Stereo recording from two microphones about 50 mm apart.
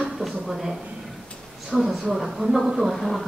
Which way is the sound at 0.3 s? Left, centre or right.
Centre.